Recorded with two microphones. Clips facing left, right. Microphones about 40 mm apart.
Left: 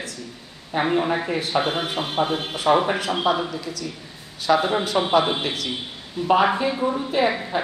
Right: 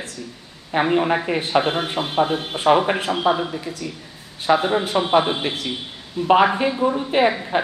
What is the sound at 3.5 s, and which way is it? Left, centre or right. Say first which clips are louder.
A woman's voice: right 1 dB; right.